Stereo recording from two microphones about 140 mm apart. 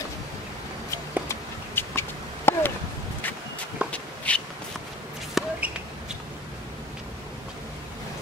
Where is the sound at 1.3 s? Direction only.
15° left (ahead or behind).